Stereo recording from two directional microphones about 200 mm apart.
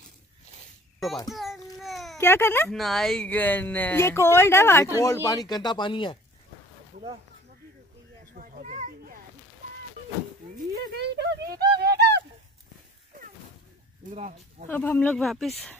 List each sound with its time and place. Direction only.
0.9 s a child's voice: centre (ahead or behind)
1.3 s babbling: centre (ahead or behind)
2.1 s speech: 10° left (ahead or behind)
2.7 s speech: centre (ahead or behind); by 6.1 s 25° left (ahead or behind)
8.4 s children playing: 40° right (ahead or behind)
10.7 s a sound: 50° right (ahead or behind)
14.1 s speech: 35° right (ahead or behind)
14.7 s speech: 10° left (ahead or behind)